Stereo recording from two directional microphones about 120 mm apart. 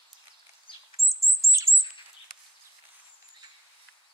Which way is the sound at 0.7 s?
45° left (ahead or behind).